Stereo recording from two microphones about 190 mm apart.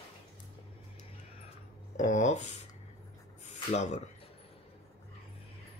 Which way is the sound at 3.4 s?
40° left (ahead or behind).